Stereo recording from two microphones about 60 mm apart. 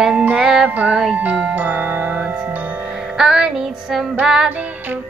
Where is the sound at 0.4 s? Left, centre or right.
Centre.